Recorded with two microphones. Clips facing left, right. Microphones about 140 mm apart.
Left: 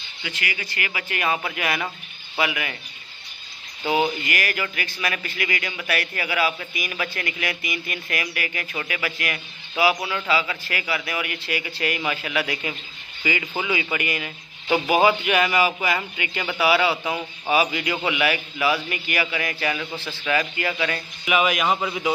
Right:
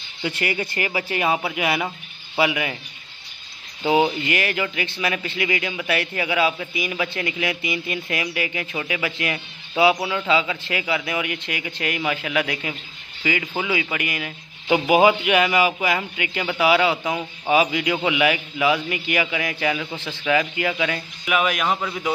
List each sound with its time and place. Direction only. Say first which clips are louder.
0.7 s speech: right 5 dB; 35° right (ahead or behind)
1.5 s a man's voice: right 3 dB; 15° right (ahead or behind)
3.8 s speech: right 3 dB; 25° right (ahead or behind)
11.6 s a man's voice: right 3 dB; 5° right (ahead or behind)
13.2 s a man's voice: right 2 dB; 5° right (ahead or behind)
21.3 s a man's voice: left 1 dB; 5° left (ahead or behind)